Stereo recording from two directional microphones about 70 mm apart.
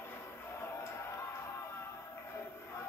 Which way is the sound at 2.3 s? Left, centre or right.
Left.